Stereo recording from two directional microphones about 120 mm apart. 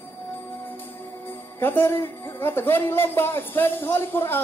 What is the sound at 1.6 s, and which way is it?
Speech, 20° left (ahead or behind).